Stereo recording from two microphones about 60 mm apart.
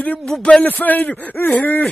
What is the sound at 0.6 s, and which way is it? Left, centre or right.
A man's voice, left.